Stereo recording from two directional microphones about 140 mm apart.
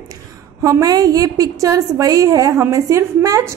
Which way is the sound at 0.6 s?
20° right (ahead or behind).